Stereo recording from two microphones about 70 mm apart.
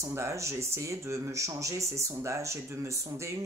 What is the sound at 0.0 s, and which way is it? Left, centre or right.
Speech, right.